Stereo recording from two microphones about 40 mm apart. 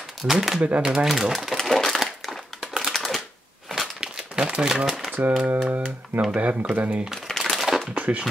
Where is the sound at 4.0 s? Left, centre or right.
Centre.